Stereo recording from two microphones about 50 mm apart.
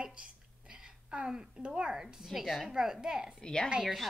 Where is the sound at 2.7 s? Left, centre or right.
Centre.